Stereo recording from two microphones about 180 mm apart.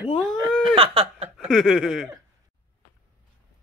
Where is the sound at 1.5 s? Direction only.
Centre (ahead or behind).